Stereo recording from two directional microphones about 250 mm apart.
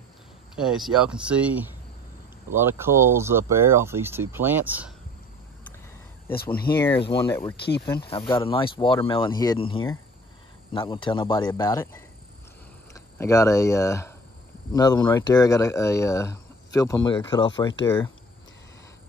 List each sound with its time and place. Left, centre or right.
0.6 s speech: centre
6.5 s speech: left
6.9 s speech: left